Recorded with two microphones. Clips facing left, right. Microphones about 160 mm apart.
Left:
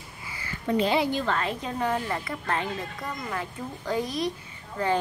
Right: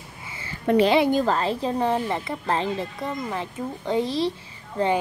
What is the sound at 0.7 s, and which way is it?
Speech, 70° right (ahead or behind).